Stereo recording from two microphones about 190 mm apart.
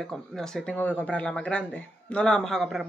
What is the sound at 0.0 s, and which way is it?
Speech, 5° left (ahead or behind).